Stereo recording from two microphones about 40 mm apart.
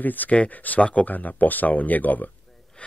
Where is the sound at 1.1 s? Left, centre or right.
Left.